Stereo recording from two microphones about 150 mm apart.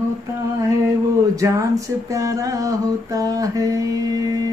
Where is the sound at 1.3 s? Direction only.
20° right (ahead or behind).